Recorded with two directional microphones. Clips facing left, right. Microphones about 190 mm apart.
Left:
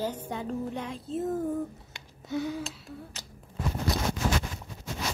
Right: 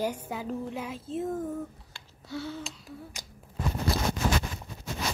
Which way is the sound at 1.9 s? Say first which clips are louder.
Left 5 dB; 15° left (ahead or behind).